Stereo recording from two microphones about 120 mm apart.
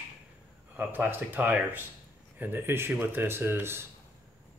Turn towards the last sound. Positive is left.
turn(degrees=-20)  # may be behind; listen again after turning